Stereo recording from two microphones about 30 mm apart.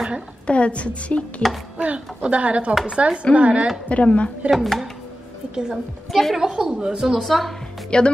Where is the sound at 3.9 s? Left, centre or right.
Left.